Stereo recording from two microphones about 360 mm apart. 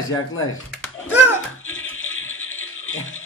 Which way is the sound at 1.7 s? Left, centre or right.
Left.